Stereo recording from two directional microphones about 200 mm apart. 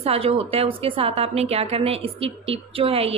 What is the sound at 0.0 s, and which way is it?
A woman's voice, 30° right (ahead or behind).